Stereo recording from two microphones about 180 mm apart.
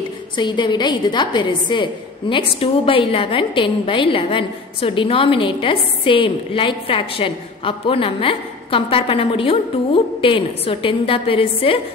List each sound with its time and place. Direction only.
0.4 s a woman's voice: 25° left (ahead or behind)